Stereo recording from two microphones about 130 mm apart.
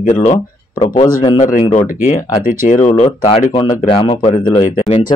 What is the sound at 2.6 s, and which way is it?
Speech, 65° left (ahead or behind).